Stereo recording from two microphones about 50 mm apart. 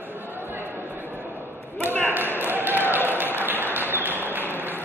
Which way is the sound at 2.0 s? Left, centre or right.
Right.